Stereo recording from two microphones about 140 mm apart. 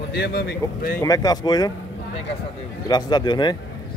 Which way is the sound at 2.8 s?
30° left (ahead or behind).